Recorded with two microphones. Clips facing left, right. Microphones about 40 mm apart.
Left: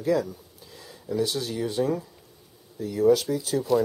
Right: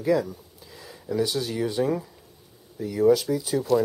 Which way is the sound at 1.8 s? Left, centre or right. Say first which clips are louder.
Even; centre.